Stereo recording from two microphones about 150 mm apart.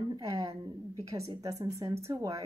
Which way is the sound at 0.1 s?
25° right (ahead or behind).